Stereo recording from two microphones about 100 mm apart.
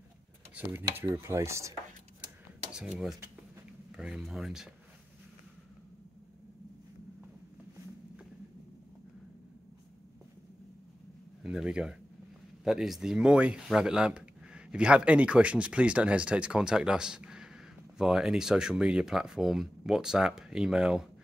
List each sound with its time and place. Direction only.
0.6 s dishes: 20° right (ahead or behind)
2.7 s speech: 5° right (ahead or behind)
11.4 s speech: 5° right (ahead or behind)